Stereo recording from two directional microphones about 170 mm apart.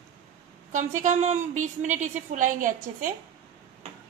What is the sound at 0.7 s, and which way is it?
A woman's voice, 45° right (ahead or behind).